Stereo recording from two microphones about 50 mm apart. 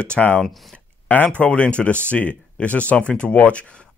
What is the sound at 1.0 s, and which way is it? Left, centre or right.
Speech, left.